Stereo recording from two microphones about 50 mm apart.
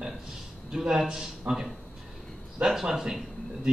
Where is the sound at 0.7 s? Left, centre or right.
Centre.